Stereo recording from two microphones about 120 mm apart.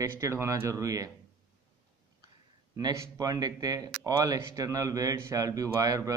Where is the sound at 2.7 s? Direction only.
30° right (ahead or behind).